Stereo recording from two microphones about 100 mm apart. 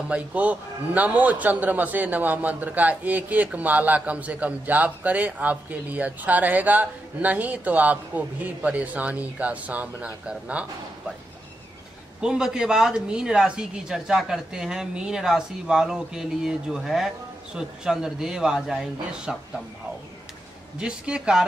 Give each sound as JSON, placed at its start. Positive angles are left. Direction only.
{"t": 0.1, "sound": "a man's voice", "side_deg": -15}
{"t": 12.2, "sound": "a woman's voice", "side_deg": -5}
{"t": 20.8, "sound": "a man's voice", "side_deg": -10}